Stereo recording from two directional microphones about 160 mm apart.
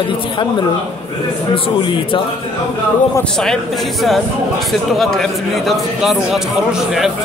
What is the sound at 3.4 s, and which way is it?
A man's voice, centre (ahead or behind).